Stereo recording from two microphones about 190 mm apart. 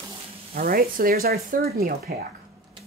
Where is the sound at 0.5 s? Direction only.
50° right (ahead or behind).